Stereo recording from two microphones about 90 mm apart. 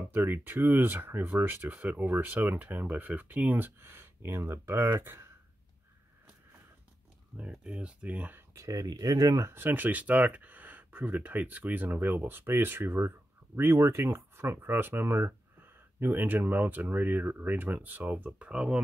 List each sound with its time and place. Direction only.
0.1 s speech: 20° right (ahead or behind)
7.6 s speech: 15° right (ahead or behind)
8.5 s speech: 40° right (ahead or behind)
9.5 s speech: 20° right (ahead or behind)